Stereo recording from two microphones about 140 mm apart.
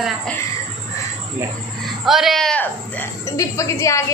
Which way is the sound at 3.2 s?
25° left (ahead or behind).